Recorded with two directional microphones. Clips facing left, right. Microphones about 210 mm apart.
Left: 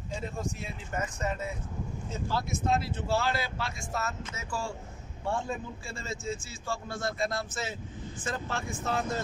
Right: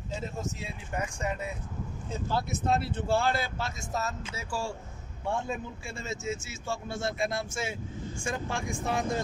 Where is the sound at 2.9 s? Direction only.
55° right (ahead or behind).